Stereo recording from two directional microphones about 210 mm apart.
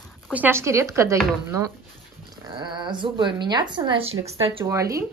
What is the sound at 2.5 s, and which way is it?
Speech, 20° right (ahead or behind).